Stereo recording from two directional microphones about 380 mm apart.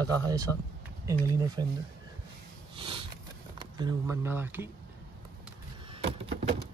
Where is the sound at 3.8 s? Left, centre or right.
Centre.